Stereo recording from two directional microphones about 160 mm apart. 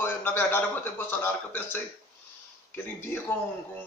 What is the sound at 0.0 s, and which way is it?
A man's voice, 15° left (ahead or behind).